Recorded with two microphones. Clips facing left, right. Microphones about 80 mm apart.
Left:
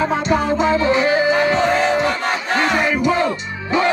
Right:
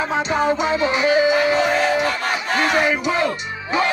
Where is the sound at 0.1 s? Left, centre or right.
Centre.